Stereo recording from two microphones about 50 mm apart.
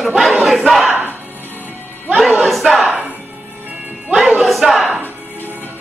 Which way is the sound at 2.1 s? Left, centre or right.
Centre.